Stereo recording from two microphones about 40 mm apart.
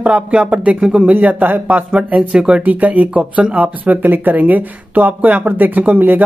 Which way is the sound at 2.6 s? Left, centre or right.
Right.